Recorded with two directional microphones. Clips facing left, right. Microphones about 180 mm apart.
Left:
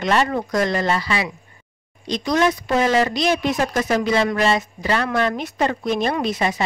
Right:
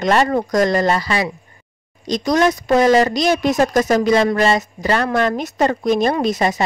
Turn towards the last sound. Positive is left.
turn(degrees=-40)  # may be behind; listen again after turning